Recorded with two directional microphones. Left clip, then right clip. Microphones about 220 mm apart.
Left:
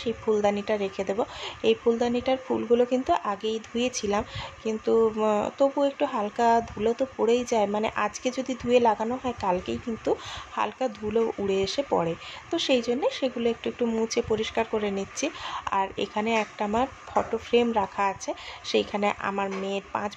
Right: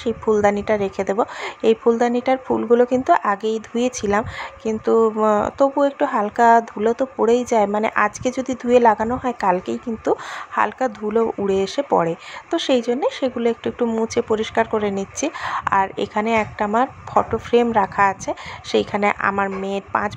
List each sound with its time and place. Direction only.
0.0 s a woman's voice: 25° right (ahead or behind)